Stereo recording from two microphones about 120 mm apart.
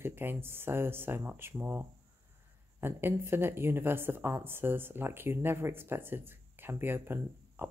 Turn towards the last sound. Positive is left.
turn(degrees=-20)  # may be behind; listen again after turning